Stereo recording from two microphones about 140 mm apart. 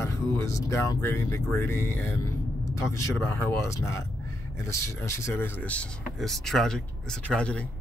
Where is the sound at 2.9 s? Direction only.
20° left (ahead or behind).